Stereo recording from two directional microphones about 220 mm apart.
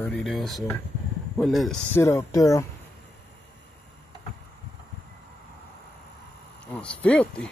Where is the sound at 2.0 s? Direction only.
15° left (ahead or behind).